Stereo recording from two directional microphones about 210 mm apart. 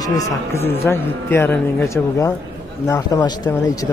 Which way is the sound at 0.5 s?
10° left (ahead or behind).